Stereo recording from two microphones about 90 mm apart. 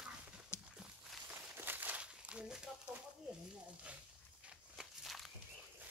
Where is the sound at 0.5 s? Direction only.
30° left (ahead or behind).